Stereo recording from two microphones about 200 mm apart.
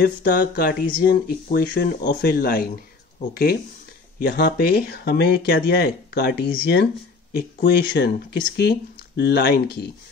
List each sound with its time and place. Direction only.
0.0 s speech: 50° left (ahead or behind)